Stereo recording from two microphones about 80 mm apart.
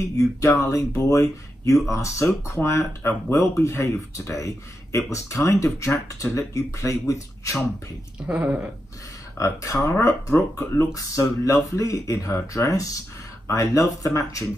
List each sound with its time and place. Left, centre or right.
0.2 s speech: left
8.3 s speech: centre
9.4 s speech: left